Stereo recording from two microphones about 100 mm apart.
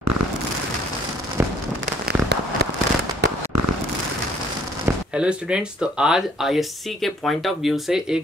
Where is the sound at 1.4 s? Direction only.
20° right (ahead or behind).